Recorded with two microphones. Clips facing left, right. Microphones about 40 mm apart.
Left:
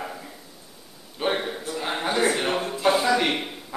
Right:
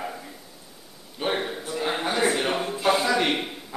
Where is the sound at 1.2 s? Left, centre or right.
Centre.